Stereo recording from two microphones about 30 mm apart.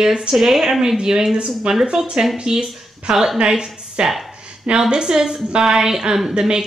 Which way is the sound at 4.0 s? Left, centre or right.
Right.